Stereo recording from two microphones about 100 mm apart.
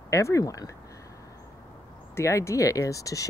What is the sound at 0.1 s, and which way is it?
Speech, 30° left (ahead or behind).